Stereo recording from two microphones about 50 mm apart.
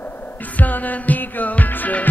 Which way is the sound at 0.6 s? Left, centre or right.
Left.